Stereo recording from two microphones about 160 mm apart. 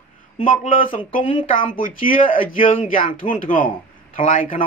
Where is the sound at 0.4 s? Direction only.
55° left (ahead or behind).